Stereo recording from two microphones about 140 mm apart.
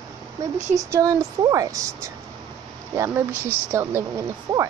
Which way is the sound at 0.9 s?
25° right (ahead or behind).